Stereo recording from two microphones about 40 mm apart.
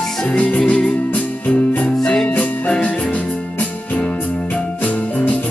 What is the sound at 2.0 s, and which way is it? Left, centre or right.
Music, left.